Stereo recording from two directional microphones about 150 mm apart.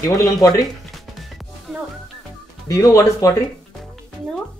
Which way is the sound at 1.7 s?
5° right (ahead or behind).